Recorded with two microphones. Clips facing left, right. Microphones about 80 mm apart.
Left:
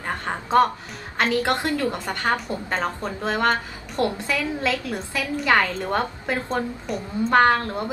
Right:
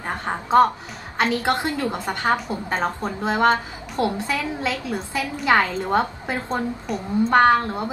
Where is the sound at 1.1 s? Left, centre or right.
Centre.